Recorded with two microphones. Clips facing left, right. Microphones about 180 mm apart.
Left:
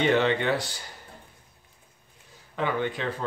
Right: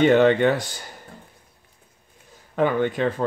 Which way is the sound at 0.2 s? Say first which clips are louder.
Right 7 dB; 50° right (ahead or behind).